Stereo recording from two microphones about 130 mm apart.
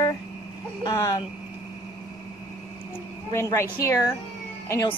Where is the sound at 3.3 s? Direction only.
20° left (ahead or behind).